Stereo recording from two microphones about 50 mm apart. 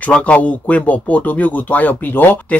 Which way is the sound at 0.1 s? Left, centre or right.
Left.